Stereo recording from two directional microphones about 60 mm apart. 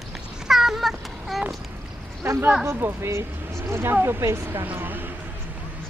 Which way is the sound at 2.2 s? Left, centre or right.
Right.